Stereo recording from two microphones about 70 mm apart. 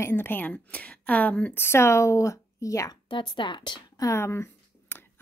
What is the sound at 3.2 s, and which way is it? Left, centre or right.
Speech, left.